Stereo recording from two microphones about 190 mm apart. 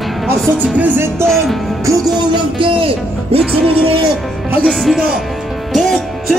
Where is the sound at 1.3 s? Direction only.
Centre (ahead or behind).